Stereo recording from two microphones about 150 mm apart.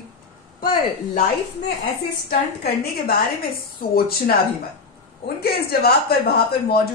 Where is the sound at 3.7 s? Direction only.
90° left.